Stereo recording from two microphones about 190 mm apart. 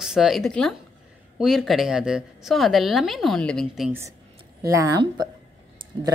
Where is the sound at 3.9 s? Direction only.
15° right (ahead or behind).